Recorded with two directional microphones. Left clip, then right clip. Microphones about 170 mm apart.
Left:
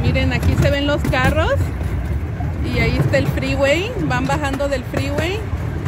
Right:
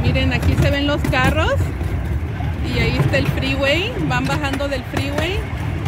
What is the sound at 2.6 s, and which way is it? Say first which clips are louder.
Speech: left 1 dB; 15° left (ahead or behind).